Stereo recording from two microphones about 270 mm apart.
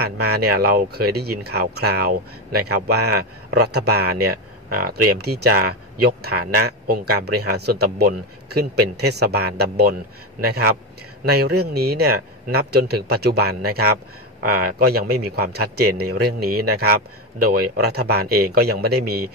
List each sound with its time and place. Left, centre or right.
0.0 s speech: right